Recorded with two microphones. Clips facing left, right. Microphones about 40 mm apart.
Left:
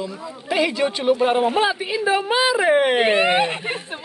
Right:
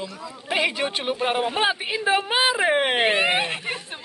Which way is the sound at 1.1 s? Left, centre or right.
Centre.